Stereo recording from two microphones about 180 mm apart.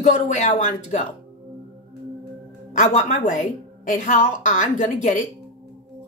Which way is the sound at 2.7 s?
40° left (ahead or behind).